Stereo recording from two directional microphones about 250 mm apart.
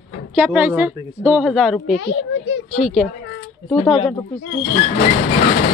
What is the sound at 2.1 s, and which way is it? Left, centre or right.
Speech, left.